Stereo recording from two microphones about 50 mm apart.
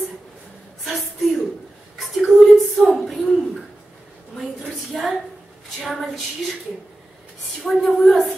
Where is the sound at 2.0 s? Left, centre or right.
Centre.